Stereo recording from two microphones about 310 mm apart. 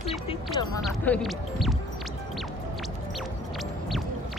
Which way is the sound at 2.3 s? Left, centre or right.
Centre.